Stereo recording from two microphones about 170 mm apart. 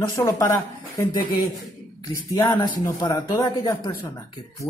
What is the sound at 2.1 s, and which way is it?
A woman's voice, 20° left (ahead or behind).